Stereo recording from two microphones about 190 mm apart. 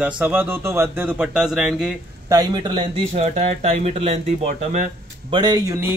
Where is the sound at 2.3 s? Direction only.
25° right (ahead or behind).